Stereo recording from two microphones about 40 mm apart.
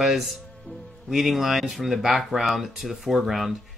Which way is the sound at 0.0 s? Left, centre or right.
Centre.